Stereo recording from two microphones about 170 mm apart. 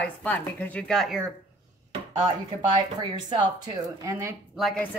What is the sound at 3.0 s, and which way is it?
Speech, 25° right (ahead or behind).